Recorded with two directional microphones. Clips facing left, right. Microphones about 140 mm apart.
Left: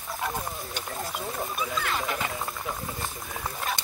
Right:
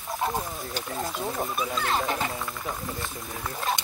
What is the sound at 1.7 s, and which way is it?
Speech, 35° right (ahead or behind).